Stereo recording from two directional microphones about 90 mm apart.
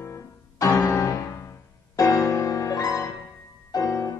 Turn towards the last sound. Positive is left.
turn(degrees=35)  # may be behind; listen again after turning